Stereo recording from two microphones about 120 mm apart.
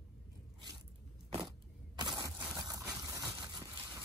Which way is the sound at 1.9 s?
35° right (ahead or behind).